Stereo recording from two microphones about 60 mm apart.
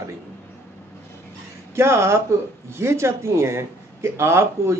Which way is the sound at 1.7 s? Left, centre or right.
Right.